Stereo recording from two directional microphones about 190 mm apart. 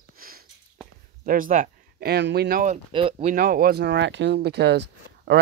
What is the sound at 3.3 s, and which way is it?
Speech, 50° right (ahead or behind).